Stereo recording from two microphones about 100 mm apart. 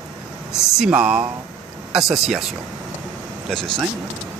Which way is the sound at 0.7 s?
10° right (ahead or behind).